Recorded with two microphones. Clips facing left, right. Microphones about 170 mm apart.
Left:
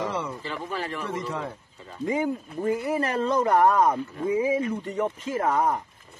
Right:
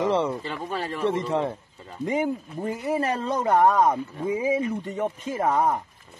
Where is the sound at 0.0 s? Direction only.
25° right (ahead or behind).